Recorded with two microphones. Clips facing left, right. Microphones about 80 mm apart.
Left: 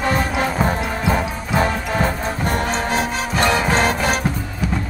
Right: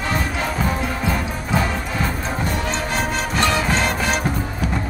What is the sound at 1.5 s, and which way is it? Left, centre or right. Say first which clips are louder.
Music: left 4 dB; left.